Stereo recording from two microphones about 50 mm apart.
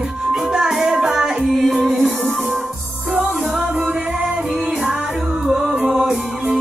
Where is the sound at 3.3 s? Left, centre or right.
Centre.